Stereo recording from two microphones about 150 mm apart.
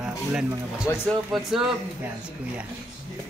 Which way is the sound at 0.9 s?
20° left (ahead or behind).